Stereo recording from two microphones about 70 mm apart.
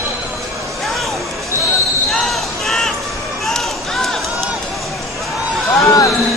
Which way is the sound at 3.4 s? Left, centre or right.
Centre.